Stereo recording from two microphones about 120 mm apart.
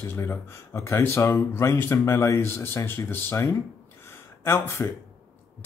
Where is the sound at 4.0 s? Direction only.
20° left (ahead or behind).